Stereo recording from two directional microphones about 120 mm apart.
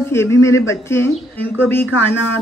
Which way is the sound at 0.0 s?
20° left (ahead or behind).